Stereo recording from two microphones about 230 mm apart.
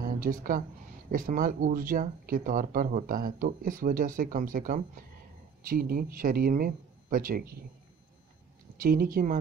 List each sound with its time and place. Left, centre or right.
0.0 s speech: right
8.7 s speech: right